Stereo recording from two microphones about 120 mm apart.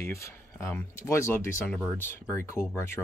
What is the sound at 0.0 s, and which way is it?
Speech, 25° left (ahead or behind).